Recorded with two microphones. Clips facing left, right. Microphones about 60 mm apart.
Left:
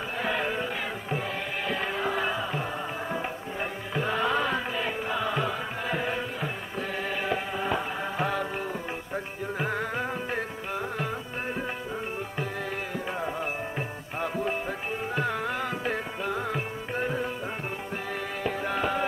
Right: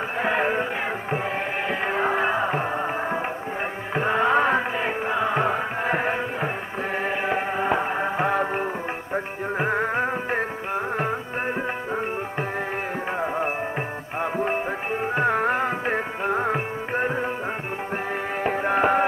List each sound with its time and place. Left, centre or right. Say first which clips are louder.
0.2 s music: right 6 dB; right
1.7 s music: right 5 dB; right
14.2 s music: right 5 dB; right
18.4 s music: right 8 dB; right